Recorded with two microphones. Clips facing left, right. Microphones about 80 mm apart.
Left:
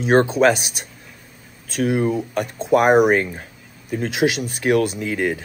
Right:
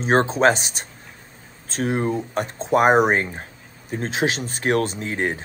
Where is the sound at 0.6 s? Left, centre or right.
Left.